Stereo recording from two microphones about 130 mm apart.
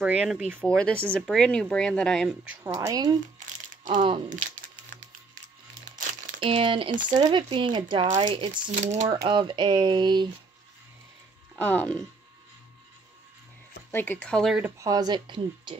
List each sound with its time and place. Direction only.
0.0 s speech: 5° right (ahead or behind)
0.6 s speech: 10° left (ahead or behind)
2.4 s speech: 10° right (ahead or behind)
2.8 s speech: 30° right (ahead or behind)
3.3 s crumpling: 85° right
6.4 s speech: 40° right (ahead or behind)
8.6 s speech: 70° right (ahead or behind)
9.1 s speech: 40° right (ahead or behind)
11.5 s speech: 15° left (ahead or behind)
13.9 s speech: 15° left (ahead or behind)
14.6 s speech: 25° right (ahead or behind)